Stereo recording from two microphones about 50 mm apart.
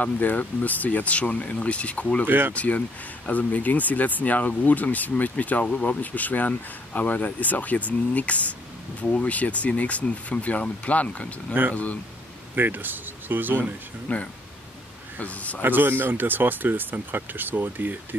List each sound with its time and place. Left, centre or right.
0.0 s speech: left
2.2 s speech: right
2.5 s speech: left
12.5 s speech: right
14.0 s speech: left
15.6 s speech: right